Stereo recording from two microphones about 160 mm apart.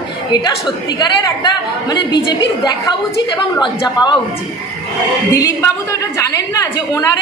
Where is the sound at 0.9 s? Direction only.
25° left (ahead or behind).